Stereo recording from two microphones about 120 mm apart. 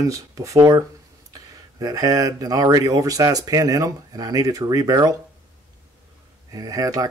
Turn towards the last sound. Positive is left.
turn(degrees=-30)  # may be behind; listen again after turning